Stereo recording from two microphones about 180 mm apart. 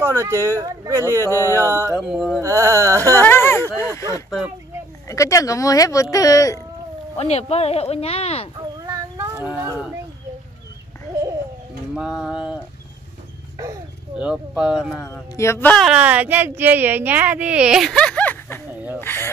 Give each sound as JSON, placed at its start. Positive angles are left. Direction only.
{"t": 0.0, "sound": "speech", "side_deg": -15}
{"t": 2.0, "sound": "speech", "side_deg": -5}
{"t": 2.4, "sound": "speech", "side_deg": -15}
{"t": 3.3, "sound": "speech", "side_deg": 10}
{"t": 5.0, "sound": "speech", "side_deg": 15}
{"t": 7.2, "sound": "speech", "side_deg": 35}
{"t": 8.8, "sound": "a sound", "side_deg": -20}
{"t": 9.3, "sound": "a sound", "side_deg": -10}
{"t": 11.9, "sound": "speech", "side_deg": 0}
{"t": 14.1, "sound": "speech", "side_deg": -5}
{"t": 15.3, "sound": "speech", "side_deg": 15}
{"t": 15.7, "sound": "speech", "side_deg": -5}